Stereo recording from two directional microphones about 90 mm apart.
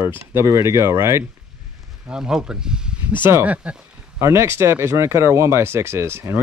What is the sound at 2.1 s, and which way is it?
Speech, 10° right (ahead or behind).